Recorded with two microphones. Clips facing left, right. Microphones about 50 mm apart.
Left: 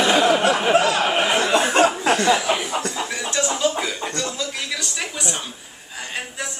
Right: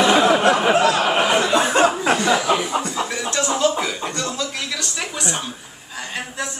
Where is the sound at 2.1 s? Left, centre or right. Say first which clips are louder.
Right 1 dB; centre.